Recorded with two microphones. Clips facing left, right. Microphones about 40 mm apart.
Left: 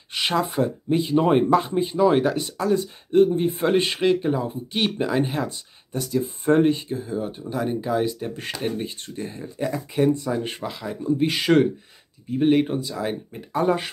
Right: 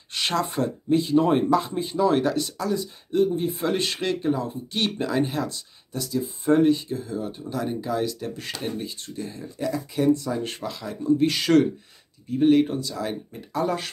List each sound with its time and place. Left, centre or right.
0.1 s a sound: centre
0.8 s speech: left
3.7 s speech: left
6.0 s speech: left